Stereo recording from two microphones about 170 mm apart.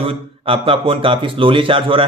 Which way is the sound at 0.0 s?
35° right (ahead or behind).